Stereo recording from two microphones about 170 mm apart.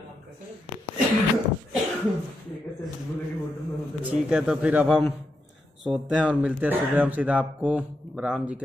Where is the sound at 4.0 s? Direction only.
5° right (ahead or behind).